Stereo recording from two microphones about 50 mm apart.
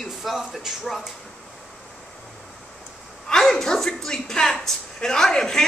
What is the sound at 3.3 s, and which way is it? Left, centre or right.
A woman's voice, centre.